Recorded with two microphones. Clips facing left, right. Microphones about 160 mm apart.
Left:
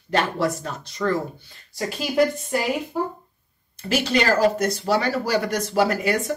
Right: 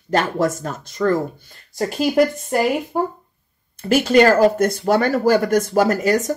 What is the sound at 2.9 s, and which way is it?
Speech, 55° right (ahead or behind).